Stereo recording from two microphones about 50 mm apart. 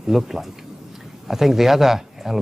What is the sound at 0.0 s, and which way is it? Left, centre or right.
Speech, centre.